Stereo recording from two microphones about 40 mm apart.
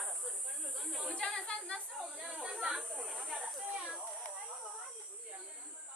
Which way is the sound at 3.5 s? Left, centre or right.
Centre.